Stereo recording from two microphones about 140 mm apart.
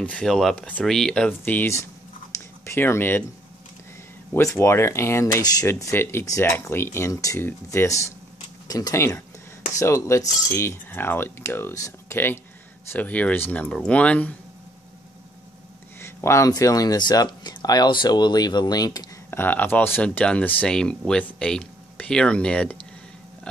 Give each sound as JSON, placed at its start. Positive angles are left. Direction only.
{"t": 0.0, "sound": "speech", "side_deg": 5}
{"t": 4.3, "sound": "speech", "side_deg": 20}
{"t": 16.0, "sound": "speech", "side_deg": 20}
{"t": 19.3, "sound": "speech", "side_deg": 15}